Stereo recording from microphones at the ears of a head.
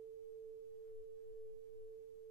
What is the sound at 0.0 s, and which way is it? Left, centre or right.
Tuning fork, right.